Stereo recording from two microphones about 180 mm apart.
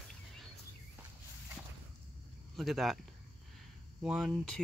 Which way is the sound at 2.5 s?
Centre (ahead or behind).